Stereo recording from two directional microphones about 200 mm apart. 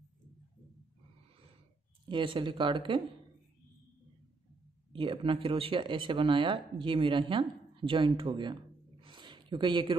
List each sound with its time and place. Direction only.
2.0 s speech: 25° right (ahead or behind)
4.9 s speech: 25° right (ahead or behind)
9.0 s a sound: 25° right (ahead or behind)